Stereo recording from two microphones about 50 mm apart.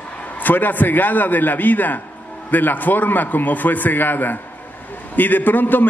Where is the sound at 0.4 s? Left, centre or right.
Left.